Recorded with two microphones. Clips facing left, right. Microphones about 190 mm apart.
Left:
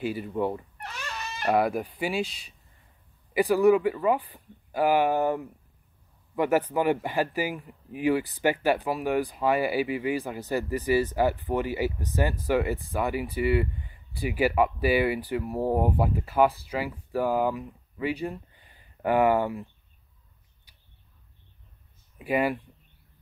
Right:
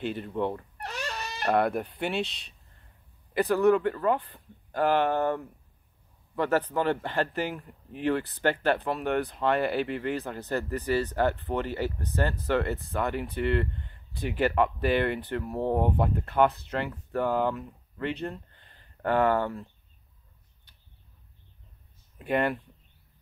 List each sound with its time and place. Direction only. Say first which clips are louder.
0.0 s speech: left 2 dB; 5° left (ahead or behind)
0.7 s a sound: right 3 dB; 40° right (ahead or behind)
1.4 s speech: left 1 dB; 5° left (ahead or behind)
22.2 s speech: left 1 dB; 5° left (ahead or behind)